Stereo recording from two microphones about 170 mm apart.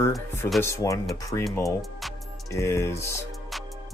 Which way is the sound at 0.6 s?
15° left (ahead or behind).